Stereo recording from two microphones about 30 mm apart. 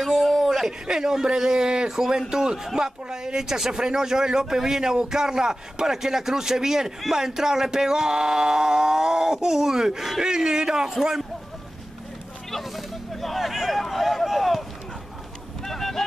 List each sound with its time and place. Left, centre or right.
0.0 s a sound: centre
0.5 s male singing: centre
1.9 s a man's voice: centre
2.3 s male singing: centre
4.6 s a man's voice: centre
7.1 s male singing: centre
10.2 s male singing: right
10.9 s a man's voice: centre
12.7 s a sound: centre
15.6 s vehicle: centre